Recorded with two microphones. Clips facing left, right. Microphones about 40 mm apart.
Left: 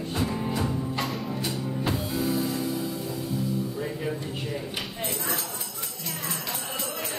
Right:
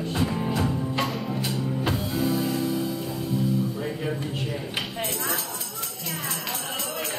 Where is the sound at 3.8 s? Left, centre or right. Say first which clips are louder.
Right 2 dB; centre.